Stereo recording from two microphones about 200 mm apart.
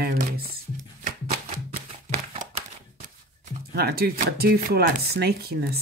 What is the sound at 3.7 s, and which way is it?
Speech, 50° right (ahead or behind).